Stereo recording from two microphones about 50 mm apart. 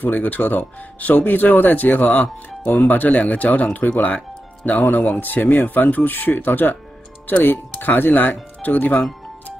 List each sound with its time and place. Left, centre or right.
0.0 s speech: left